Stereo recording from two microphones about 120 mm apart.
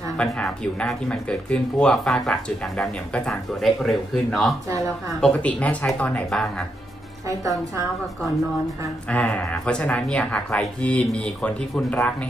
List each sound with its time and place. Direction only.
0.2 s speech: 5° left (ahead or behind)
7.2 s a woman's voice: 25° right (ahead or behind)
9.1 s speech: 10° left (ahead or behind)